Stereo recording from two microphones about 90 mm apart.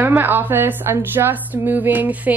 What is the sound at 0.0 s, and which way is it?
A woman's voice, 20° right (ahead or behind).